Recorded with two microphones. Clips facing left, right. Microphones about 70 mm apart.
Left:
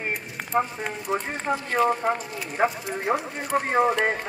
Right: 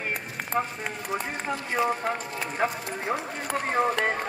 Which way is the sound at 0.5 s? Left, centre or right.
Centre.